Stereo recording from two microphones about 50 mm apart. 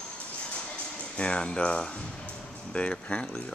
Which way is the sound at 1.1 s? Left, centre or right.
Left.